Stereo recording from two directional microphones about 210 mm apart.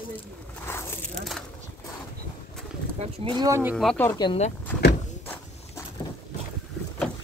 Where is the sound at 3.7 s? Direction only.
5° left (ahead or behind).